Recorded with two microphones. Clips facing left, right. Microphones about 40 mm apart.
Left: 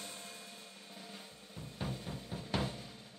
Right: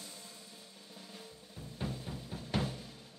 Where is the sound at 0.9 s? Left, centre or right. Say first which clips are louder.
Right 1 dB; centre.